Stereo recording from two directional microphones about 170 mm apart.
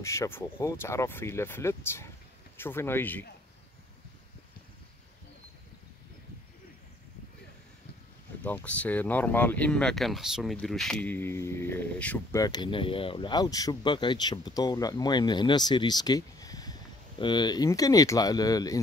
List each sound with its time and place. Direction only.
0.0 s speech: 15° left (ahead or behind)
8.4 s speech: 10° left (ahead or behind)
12.4 s speech: 25° left (ahead or behind)